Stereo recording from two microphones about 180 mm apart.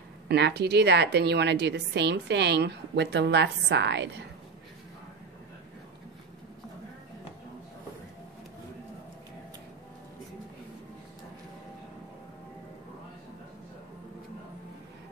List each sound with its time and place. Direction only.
0.3 s a woman's voice: 65° right (ahead or behind)